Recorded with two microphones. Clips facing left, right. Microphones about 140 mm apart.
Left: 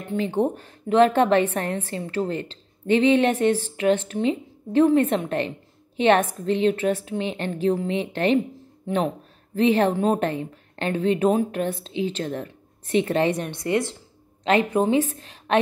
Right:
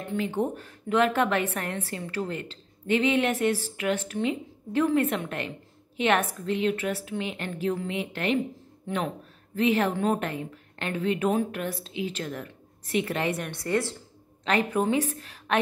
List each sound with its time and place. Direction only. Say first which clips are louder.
0.1 s a woman's voice: left 5 dB; 30° left (ahead or behind)
9.6 s a woman's voice: left 5 dB; 30° left (ahead or behind)